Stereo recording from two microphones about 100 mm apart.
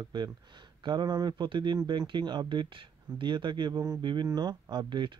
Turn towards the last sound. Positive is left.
turn(degrees=-50)  # may be behind; listen again after turning